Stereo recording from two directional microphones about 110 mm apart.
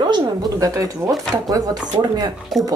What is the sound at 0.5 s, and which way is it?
Speech, 30° right (ahead or behind).